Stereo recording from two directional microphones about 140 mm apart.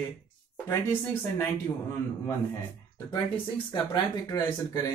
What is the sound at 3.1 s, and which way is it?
Speech, 30° left (ahead or behind).